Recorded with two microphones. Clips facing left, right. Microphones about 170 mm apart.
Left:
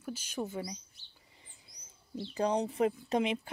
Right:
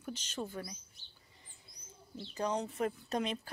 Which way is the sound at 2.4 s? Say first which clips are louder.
Left 5 dB; 30° left (ahead or behind).